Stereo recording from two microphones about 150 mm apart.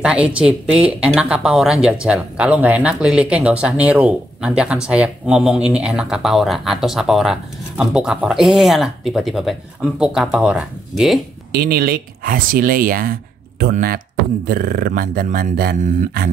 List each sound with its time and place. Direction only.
0.0 s a woman's voice: 10° right (ahead or behind)
11.5 s speech: 90° right; by 16.3 s 75° right (ahead or behind)